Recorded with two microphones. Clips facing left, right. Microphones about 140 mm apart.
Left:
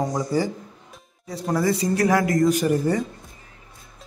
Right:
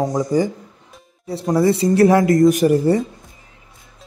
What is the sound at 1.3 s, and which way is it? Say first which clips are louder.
Speech: right 6 dB; 25° right (ahead or behind).